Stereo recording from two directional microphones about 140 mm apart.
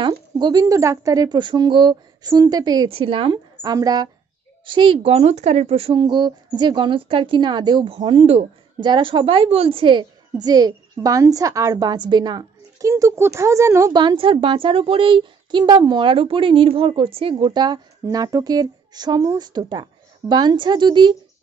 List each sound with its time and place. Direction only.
0.1 s speech: 30° right (ahead or behind)
3.7 s speech: 30° right (ahead or behind)
4.6 s speech: 40° right (ahead or behind); by 13.9 s 20° right (ahead or behind)
13.9 s speech: 35° right (ahead or behind)